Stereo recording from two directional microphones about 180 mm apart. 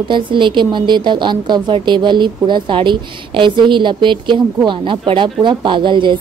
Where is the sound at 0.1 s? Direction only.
25° right (ahead or behind).